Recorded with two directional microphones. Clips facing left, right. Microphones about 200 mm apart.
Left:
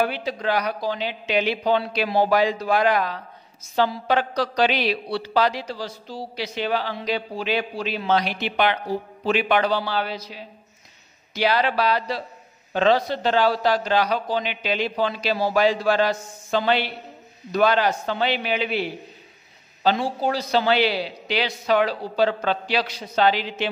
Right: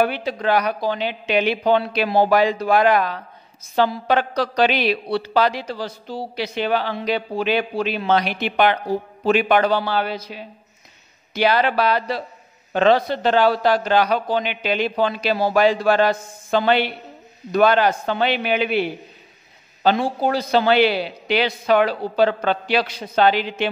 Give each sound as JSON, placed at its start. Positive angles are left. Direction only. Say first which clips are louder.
{"t": 0.0, "sound": "a woman's voice", "louder": "right 3 dB", "side_deg": -55}